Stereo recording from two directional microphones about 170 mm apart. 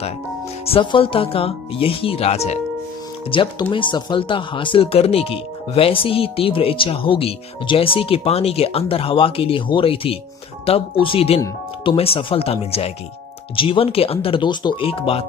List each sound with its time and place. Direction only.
0.7 s speech: 30° left (ahead or behind)